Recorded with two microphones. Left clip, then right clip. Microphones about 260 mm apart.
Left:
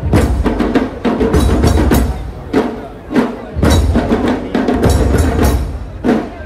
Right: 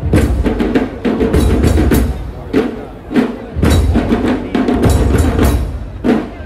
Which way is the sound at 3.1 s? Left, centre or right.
Centre.